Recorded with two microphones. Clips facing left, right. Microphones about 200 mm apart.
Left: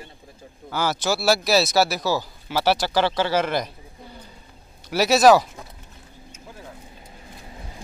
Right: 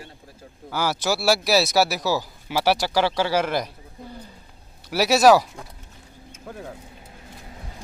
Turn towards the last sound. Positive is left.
turn(degrees=-60)  # may be behind; listen again after turning